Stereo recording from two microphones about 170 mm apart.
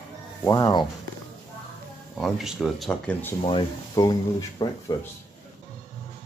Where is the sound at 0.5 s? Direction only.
25° left (ahead or behind).